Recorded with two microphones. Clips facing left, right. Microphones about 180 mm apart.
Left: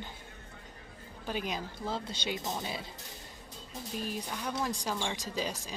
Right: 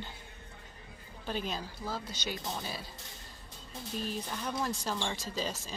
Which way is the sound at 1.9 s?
25° left (ahead or behind).